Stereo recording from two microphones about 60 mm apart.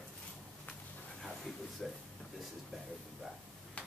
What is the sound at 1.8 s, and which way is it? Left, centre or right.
Speech, centre.